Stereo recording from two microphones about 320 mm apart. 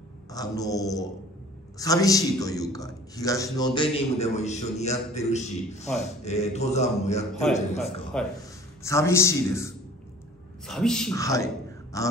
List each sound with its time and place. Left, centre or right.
0.3 s a man's voice: centre
7.8 s a man's voice: centre
10.7 s a man's voice: centre